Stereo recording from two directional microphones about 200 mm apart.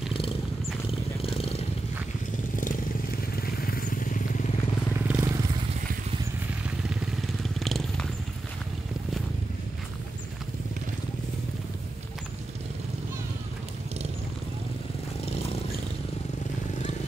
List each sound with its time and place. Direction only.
1.2 s vehicle: 30° left (ahead or behind)
3.6 s vehicle: 45° left (ahead or behind)
5.0 s vehicle: 10° right (ahead or behind)
7.4 s vehicle: centre (ahead or behind)